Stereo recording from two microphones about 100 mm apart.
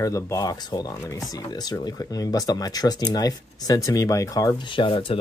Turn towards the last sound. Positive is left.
turn(degrees=60)  # may be behind; listen again after turning